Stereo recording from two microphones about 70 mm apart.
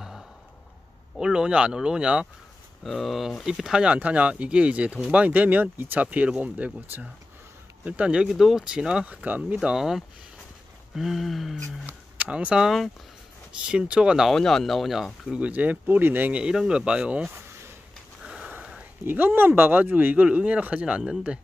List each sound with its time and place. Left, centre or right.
1.1 s speech: centre
2.8 s speech: centre
8.3 s speech: centre; by 9.6 s right
9.6 s speech: centre
12.2 s speech: centre
12.6 s speech: centre
13.7 s speech: centre
14.3 s speech: centre
15.3 s speech: right
18.2 s a sound: centre
19.0 s speech: right